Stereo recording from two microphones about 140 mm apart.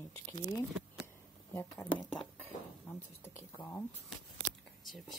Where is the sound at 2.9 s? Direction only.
20° left (ahead or behind).